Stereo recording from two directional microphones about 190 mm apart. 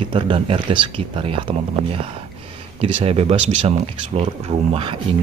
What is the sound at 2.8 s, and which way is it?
Speech, 30° right (ahead or behind).